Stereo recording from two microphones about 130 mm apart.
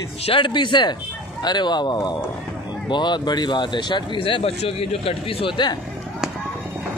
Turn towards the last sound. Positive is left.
turn(degrees=40)  # may be behind; listen again after turning